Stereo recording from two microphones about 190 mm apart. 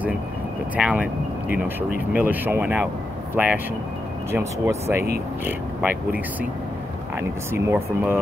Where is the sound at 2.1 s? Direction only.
10° right (ahead or behind).